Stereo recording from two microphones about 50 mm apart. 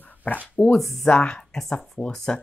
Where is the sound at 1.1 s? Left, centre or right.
Left.